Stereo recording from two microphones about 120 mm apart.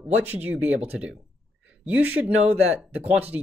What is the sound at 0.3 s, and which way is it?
Speech, 15° right (ahead or behind).